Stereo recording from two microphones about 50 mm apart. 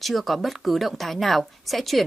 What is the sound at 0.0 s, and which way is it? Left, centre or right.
A woman's voice, centre.